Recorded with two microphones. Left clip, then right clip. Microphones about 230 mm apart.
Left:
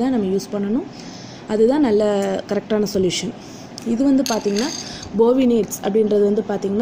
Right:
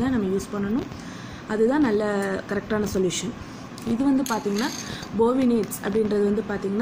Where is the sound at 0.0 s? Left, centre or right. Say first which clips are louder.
Left 5 dB; centre.